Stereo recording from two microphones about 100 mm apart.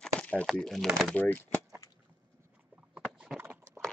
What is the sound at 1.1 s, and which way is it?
Speech, 20° left (ahead or behind).